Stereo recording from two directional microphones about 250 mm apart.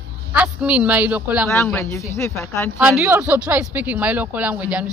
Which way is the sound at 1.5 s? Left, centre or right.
Centre.